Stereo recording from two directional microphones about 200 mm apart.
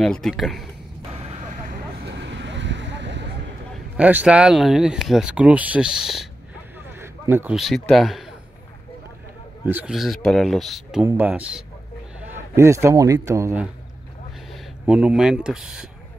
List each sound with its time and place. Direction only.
0.0 s speech: centre (ahead or behind)
2.0 s vehicle: 60° right (ahead or behind)
3.7 s speech: 5° right (ahead or behind)
9.7 s a man's voice: 5° right (ahead or behind)